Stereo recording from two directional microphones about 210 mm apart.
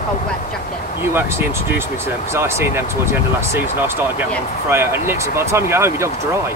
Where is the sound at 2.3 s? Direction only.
10° right (ahead or behind).